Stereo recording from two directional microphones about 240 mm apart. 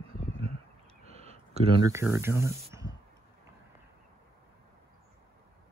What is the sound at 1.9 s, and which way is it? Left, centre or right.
Speech, centre.